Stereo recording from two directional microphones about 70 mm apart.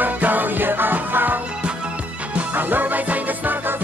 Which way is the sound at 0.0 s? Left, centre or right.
Right.